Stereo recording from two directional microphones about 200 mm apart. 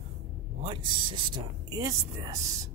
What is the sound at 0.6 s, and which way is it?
Speech, 25° right (ahead or behind).